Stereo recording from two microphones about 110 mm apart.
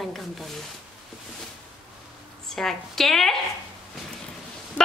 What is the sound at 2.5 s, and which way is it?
Speech, 5° left (ahead or behind).